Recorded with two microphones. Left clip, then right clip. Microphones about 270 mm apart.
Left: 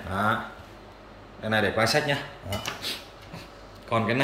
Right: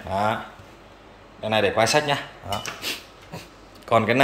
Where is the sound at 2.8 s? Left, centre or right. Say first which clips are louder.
Right 3 dB; centre.